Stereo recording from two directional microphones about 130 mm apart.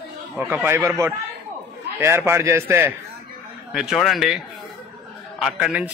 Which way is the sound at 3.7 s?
5° right (ahead or behind).